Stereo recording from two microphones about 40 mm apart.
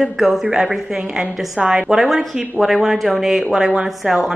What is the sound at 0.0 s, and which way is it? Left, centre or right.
Speech, centre.